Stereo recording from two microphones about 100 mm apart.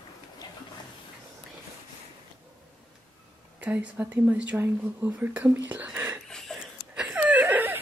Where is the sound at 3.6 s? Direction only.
15° right (ahead or behind).